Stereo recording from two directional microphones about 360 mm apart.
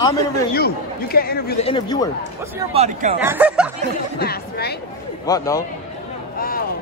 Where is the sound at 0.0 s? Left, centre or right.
Centre.